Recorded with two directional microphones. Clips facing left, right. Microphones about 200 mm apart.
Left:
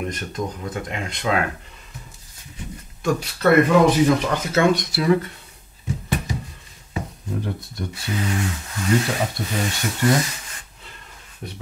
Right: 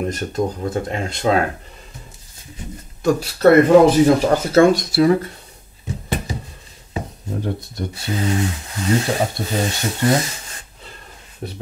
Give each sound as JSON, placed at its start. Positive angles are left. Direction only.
{"t": 0.0, "sound": "speech", "side_deg": -35}
{"t": 3.0, "sound": "speech", "side_deg": -35}
{"t": 7.4, "sound": "speech", "side_deg": -30}
{"t": 11.4, "sound": "speech", "side_deg": -35}